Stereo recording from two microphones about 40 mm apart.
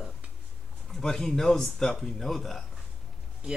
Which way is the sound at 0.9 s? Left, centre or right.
Centre.